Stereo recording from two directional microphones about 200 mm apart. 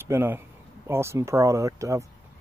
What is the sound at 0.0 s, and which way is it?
Speech, 10° right (ahead or behind).